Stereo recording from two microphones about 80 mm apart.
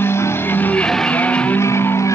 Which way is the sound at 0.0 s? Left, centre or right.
Left.